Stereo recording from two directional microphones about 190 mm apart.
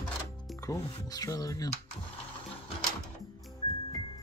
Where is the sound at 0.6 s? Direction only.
20° left (ahead or behind).